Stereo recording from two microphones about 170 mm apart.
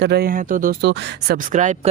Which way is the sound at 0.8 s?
90° right.